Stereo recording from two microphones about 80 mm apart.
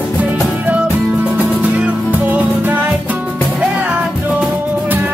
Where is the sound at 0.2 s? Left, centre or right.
Centre.